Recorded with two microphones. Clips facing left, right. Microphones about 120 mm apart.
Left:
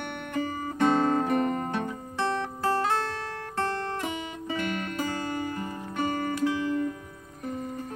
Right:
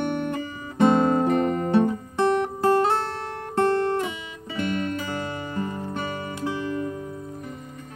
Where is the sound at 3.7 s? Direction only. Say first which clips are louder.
Right 8 dB; 35° right (ahead or behind).